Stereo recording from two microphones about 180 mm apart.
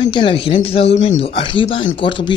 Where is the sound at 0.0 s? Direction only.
25° left (ahead or behind).